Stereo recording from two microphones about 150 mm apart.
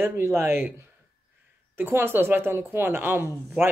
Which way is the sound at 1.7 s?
15° right (ahead or behind).